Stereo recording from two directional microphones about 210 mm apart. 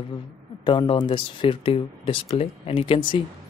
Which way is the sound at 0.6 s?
25° left (ahead or behind).